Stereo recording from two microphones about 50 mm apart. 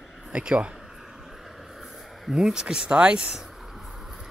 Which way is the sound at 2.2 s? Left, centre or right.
Centre.